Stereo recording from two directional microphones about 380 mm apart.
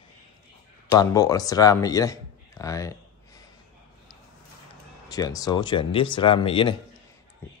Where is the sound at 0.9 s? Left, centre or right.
Centre.